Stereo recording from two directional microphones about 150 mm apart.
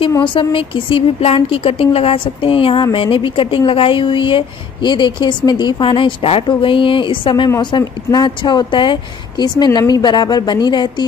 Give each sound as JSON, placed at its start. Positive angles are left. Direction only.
{"t": 0.1, "sound": "speech", "side_deg": 35}